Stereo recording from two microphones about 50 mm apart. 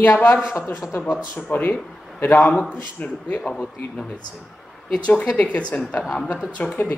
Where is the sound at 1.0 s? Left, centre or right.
Left.